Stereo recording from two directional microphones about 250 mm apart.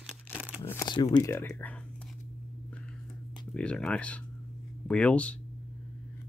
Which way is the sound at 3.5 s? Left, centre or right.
Centre.